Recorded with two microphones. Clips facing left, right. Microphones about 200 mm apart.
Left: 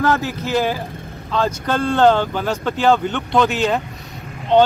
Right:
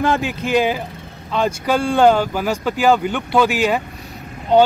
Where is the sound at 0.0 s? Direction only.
20° right (ahead or behind).